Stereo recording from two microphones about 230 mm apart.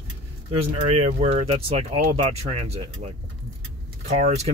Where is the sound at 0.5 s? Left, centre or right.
Right.